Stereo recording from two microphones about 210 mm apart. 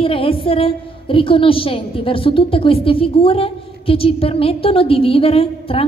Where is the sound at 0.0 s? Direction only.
25° left (ahead or behind).